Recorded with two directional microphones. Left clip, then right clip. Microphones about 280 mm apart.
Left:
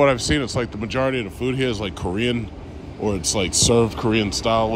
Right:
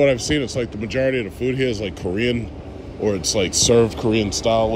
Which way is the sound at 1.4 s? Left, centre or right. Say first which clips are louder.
Right 1 dB; right.